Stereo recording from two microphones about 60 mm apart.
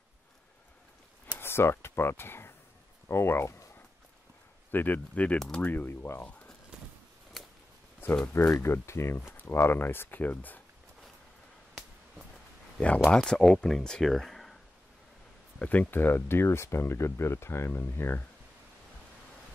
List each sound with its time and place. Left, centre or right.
1.4 s a sound: left
3.1 s speech: left
4.6 s speech: left
8.3 s speech: left
13.0 s speech: centre
15.6 s speech: left